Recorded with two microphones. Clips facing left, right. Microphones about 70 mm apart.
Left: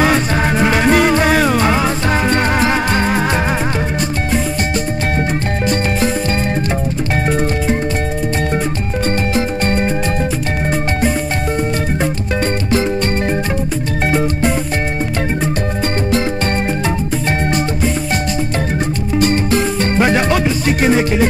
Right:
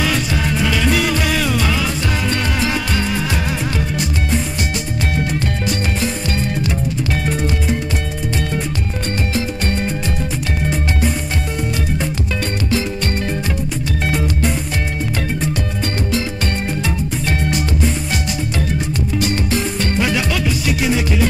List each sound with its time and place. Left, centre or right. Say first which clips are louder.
0.0 s music: left 5 dB; left
9.3 s music: left 5 dB; left
19.1 s music: left 6 dB; left